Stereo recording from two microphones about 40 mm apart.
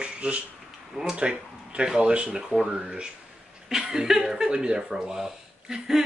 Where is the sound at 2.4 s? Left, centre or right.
Centre.